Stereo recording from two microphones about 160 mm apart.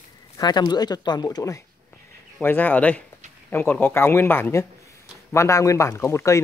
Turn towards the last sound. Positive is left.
turn(degrees=15)  # may be behind; listen again after turning